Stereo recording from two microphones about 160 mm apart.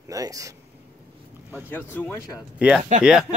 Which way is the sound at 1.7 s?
10° left (ahead or behind).